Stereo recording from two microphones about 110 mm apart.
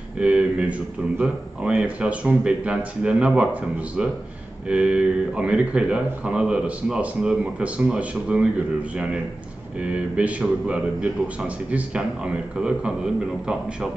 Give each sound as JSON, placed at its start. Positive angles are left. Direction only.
{"t": 0.2, "sound": "a man's voice", "side_deg": -10}